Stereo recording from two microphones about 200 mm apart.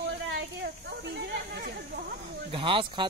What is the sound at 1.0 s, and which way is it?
Speech, 55° right (ahead or behind).